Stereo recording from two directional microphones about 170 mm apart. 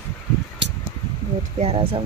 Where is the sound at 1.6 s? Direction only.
35° right (ahead or behind).